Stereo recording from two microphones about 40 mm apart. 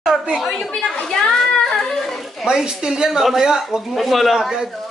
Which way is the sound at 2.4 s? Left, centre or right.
Centre.